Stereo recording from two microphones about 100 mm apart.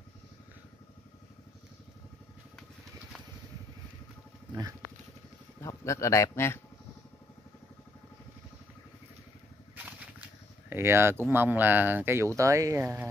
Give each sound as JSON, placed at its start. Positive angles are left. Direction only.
{"t": 5.6, "sound": "speech", "side_deg": 30}
{"t": 10.7, "sound": "speech", "side_deg": -25}